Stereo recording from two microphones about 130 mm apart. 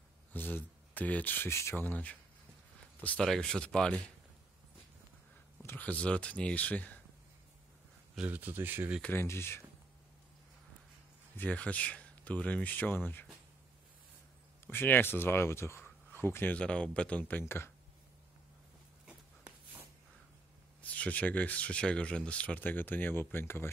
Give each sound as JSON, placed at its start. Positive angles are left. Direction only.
{"t": 0.3, "sound": "speech", "side_deg": 15}
{"t": 5.6, "sound": "speech", "side_deg": 15}
{"t": 8.2, "sound": "speech", "side_deg": -15}
{"t": 9.0, "sound": "speech", "side_deg": 20}
{"t": 11.3, "sound": "speech", "side_deg": 10}
{"t": 14.7, "sound": "speech", "side_deg": 15}
{"t": 19.0, "sound": "a sound", "side_deg": -10}
{"t": 20.8, "sound": "speech", "side_deg": 10}